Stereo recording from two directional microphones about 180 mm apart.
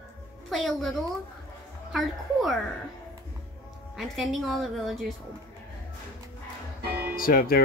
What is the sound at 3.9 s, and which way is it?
A woman's voice, centre (ahead or behind).